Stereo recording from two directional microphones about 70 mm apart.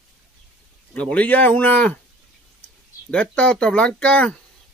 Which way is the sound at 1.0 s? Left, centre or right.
Centre.